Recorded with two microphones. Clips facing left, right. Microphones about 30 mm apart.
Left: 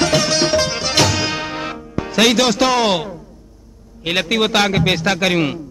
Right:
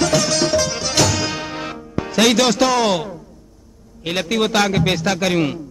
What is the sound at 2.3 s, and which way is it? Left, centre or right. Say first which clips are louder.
Speech: even; centre.